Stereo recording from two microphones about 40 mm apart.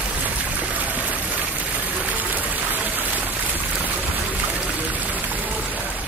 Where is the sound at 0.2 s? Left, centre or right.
Right.